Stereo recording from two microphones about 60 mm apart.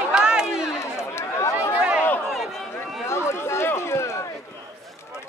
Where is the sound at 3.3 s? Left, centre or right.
Left.